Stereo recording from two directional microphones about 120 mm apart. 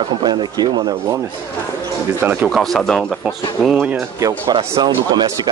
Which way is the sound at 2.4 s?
5° left (ahead or behind).